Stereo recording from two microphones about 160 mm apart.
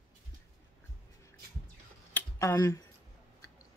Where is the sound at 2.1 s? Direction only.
15° left (ahead or behind).